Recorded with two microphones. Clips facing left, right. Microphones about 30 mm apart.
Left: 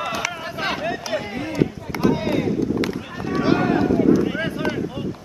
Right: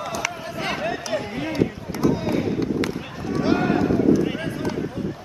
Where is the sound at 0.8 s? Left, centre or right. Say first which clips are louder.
Left 1 dB; centre.